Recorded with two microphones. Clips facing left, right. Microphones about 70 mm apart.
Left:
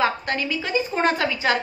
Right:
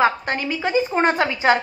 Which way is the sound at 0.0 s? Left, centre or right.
Right.